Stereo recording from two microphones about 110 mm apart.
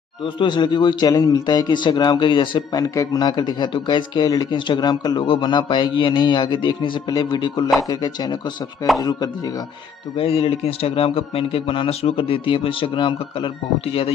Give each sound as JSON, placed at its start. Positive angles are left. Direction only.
{"t": 0.2, "sound": "a man's voice", "side_deg": 45}
{"t": 10.1, "sound": "a man's voice", "side_deg": 60}